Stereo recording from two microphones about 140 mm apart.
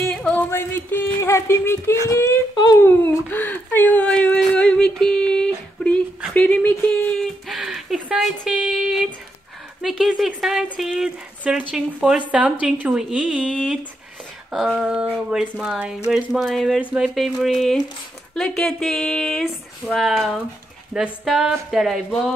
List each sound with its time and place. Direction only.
0.1 s a sound: 5° left (ahead or behind)
2.0 s speech: 20° left (ahead or behind)
2.5 s speech: 30° left (ahead or behind)
2.8 s whimper: 15° left (ahead or behind)
6.3 s a sound: 10° left (ahead or behind)
9.8 s a woman's voice: 5° right (ahead or behind)